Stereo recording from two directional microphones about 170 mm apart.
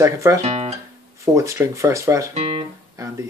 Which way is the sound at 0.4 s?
40° right (ahead or behind).